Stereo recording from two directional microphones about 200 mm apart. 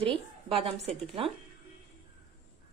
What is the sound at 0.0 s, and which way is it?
A woman's voice, 30° right (ahead or behind).